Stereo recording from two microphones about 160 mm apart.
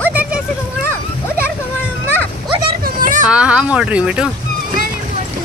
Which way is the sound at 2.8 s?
55° right (ahead or behind).